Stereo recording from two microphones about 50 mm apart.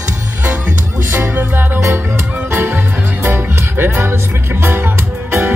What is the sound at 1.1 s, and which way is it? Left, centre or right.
Music, right.